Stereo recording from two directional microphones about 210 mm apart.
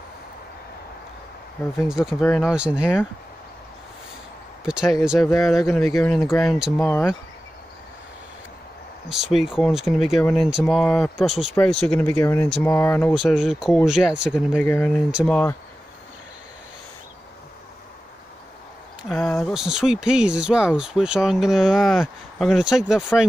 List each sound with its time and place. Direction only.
1.9 s speech: centre (ahead or behind)
4.6 s speech: 5° right (ahead or behind)
9.1 s speech: centre (ahead or behind)
13.1 s speech: centre (ahead or behind)
14.6 s speech: 5° left (ahead or behind)
19.0 s speech: 5° left (ahead or behind)